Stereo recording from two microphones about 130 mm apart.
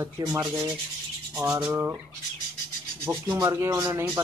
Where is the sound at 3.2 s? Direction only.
30° right (ahead or behind).